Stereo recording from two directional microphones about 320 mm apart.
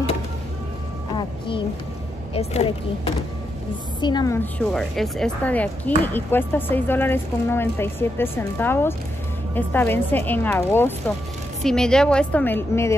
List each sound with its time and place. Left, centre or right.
2.3 s speech: centre
4.0 s a woman's voice: centre